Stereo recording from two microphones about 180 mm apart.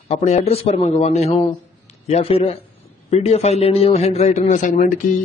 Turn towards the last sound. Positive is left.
turn(degrees=45)  # may be behind; listen again after turning